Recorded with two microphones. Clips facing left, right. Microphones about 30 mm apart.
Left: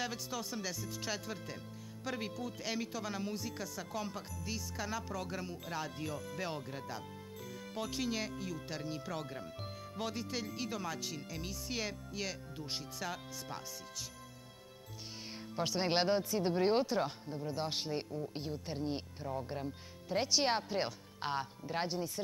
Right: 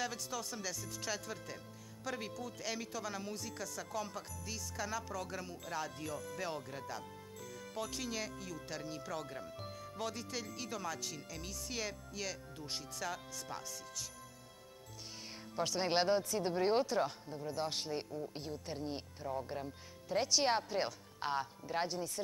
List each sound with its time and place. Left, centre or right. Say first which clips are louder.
0.0 s speech: left 1 dB; centre
15.5 s speech: left 1 dB; centre